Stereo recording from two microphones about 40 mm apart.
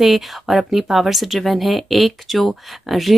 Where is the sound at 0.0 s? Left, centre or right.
Centre.